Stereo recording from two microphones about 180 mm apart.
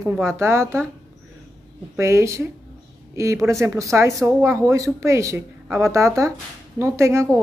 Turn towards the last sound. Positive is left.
turn(degrees=-15)  # may be behind; listen again after turning